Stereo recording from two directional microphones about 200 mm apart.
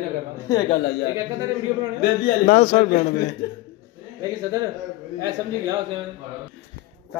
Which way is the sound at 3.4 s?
45° left (ahead or behind).